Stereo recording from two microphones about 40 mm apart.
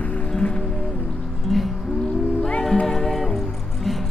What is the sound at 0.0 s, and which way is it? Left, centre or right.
Music, left.